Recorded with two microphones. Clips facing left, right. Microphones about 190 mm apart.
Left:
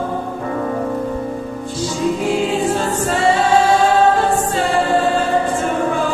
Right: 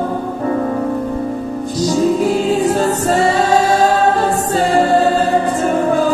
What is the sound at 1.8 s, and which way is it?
Music, 40° right (ahead or behind).